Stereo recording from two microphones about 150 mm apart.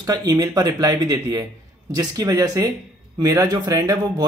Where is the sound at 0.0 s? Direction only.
20° right (ahead or behind).